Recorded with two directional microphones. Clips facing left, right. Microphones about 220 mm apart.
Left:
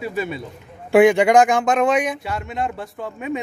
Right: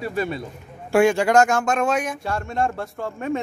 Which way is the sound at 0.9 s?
15° left (ahead or behind).